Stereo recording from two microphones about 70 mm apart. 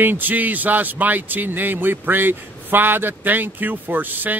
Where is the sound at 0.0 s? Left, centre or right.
Right.